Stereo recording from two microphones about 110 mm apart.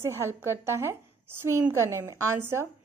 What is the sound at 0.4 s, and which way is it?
A woman's voice, 20° right (ahead or behind).